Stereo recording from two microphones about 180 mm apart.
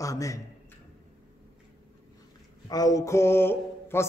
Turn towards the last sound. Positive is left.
turn(degrees=10)  # may be behind; listen again after turning